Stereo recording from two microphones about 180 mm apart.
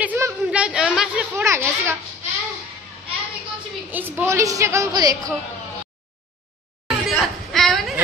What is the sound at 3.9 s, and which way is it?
A man's voice, 10° right (ahead or behind).